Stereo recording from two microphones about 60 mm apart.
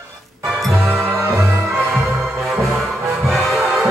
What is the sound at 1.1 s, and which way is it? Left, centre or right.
Music, right.